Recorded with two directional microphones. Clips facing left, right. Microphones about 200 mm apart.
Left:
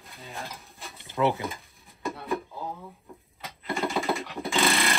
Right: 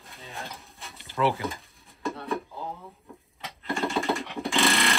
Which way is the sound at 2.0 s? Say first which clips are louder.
Even; centre (ahead or behind).